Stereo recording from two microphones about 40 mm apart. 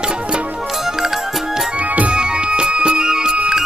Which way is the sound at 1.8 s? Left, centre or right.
Right.